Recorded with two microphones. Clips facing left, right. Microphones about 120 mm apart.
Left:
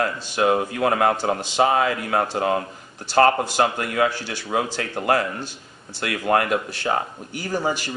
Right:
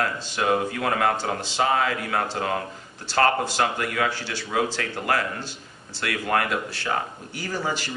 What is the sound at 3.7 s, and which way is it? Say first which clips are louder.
Speech: left 4 dB; 30° left (ahead or behind).